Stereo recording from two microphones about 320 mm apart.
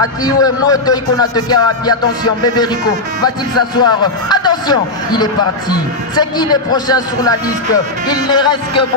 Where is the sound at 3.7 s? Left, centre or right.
Centre.